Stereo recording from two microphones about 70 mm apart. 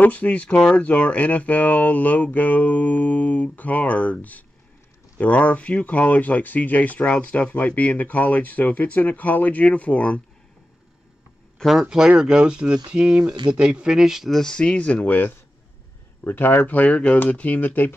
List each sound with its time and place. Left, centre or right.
0.0 s speech: left
0.8 s speech: left
11.7 s speech: centre
14.4 s speech: centre